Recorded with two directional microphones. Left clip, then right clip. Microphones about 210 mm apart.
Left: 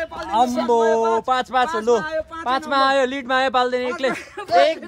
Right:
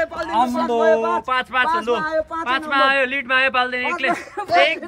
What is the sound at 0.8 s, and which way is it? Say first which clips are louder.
Speech: right 4 dB; 35° right (ahead or behind).